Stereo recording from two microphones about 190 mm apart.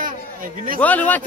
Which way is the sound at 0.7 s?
10° left (ahead or behind).